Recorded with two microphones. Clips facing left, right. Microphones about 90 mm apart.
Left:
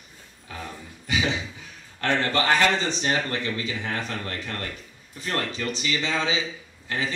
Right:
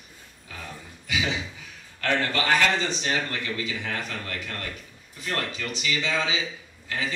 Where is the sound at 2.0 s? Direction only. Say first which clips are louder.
Left 2 dB; 35° left (ahead or behind).